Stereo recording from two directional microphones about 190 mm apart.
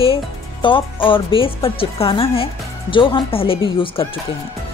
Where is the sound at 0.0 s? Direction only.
25° left (ahead or behind).